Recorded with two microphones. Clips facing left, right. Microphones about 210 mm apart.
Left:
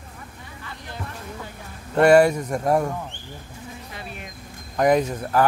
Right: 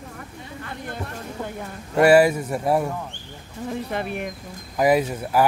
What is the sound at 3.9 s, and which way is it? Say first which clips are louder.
Speech: right 10 dB; 60° right (ahead or behind).